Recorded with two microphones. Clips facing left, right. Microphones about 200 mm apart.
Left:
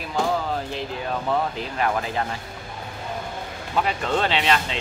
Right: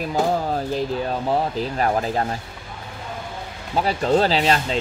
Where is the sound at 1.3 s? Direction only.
35° right (ahead or behind).